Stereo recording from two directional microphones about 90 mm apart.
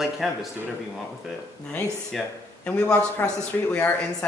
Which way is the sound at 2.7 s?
15° left (ahead or behind).